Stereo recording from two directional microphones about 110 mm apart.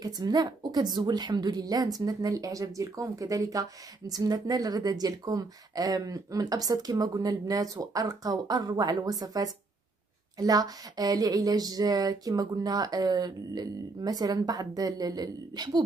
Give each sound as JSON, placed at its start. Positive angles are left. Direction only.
{"t": 0.0, "sound": "speech", "side_deg": -35}